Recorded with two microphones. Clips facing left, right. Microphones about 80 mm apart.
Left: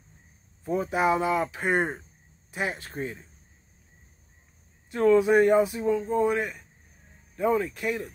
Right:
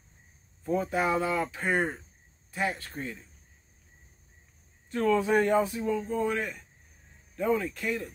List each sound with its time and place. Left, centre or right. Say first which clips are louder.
0.7 s speech: left 3 dB; centre
4.9 s speech: left 5 dB; centre